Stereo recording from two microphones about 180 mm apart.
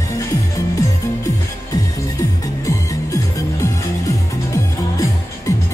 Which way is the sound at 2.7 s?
15° left (ahead or behind).